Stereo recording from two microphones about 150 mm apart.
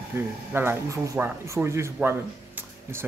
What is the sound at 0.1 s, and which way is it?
Speech, 15° right (ahead or behind).